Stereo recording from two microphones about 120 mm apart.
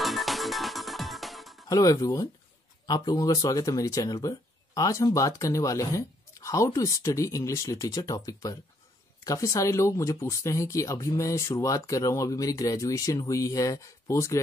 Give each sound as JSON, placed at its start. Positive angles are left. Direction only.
{"t": 0.0, "sound": "music", "side_deg": 0}
{"t": 1.7, "sound": "speech", "side_deg": 30}